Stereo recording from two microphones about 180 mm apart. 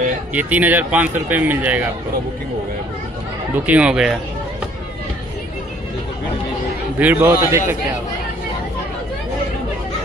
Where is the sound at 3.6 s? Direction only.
5° right (ahead or behind).